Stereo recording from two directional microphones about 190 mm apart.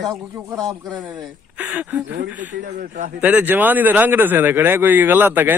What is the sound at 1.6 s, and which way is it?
Speech, 10° right (ahead or behind).